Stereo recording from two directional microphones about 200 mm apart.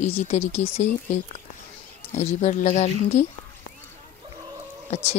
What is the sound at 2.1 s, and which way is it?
Speech, 35° left (ahead or behind).